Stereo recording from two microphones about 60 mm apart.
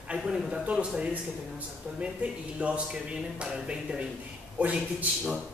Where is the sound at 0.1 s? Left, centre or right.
Centre.